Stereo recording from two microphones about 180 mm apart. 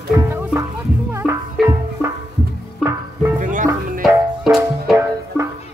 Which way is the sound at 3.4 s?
45° right (ahead or behind).